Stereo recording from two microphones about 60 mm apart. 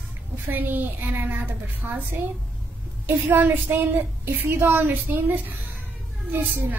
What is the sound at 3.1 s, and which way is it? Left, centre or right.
A woman's voice, right.